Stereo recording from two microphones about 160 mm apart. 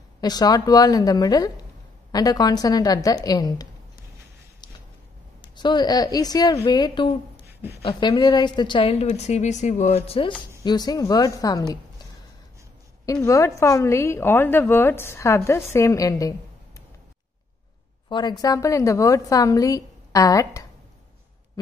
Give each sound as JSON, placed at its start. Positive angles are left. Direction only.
{"t": 0.2, "sound": "a woman's voice", "side_deg": 25}
{"t": 5.4, "sound": "a woman's voice", "side_deg": 30}
{"t": 10.6, "sound": "a woman's voice", "side_deg": 25}
{"t": 13.0, "sound": "a woman's voice", "side_deg": 20}
{"t": 18.0, "sound": "a woman's voice", "side_deg": 25}